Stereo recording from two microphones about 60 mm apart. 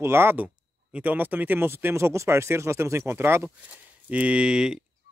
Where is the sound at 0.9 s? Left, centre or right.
Right.